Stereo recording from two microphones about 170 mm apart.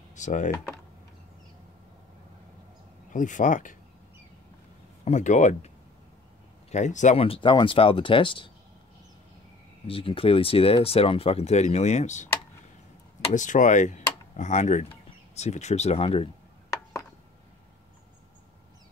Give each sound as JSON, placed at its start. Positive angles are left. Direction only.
{"t": 0.1, "sound": "speech", "side_deg": 45}
{"t": 3.1, "sound": "speech", "side_deg": 50}
{"t": 5.0, "sound": "speech", "side_deg": 45}
{"t": 6.7, "sound": "speech", "side_deg": 45}
{"t": 9.8, "sound": "speech", "side_deg": 30}
{"t": 13.3, "sound": "speech", "side_deg": 50}